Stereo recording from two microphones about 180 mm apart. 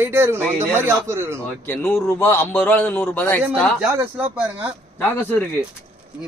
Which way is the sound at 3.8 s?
5° right (ahead or behind).